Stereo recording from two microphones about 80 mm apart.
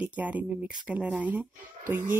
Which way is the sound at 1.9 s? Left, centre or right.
Right.